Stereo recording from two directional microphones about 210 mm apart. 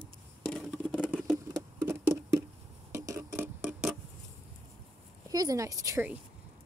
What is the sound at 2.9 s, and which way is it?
Clock, 15° right (ahead or behind).